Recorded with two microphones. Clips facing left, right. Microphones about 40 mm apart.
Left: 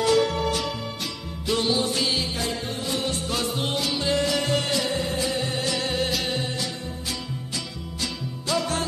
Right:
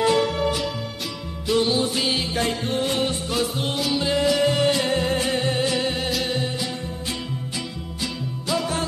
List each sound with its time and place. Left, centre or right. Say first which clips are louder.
0.0 s music: right 1 dB; centre
2.3 s music: right 5 dB; right
3.3 s music: right 2 dB; centre
4.8 s music: right 4 dB; right
5.7 s music: right 3 dB; centre
5.9 s music: right 1 dB; centre
8.5 s music: right 1 dB; centre